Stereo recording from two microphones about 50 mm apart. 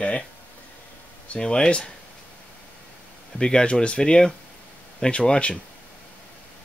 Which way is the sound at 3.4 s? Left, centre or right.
Centre.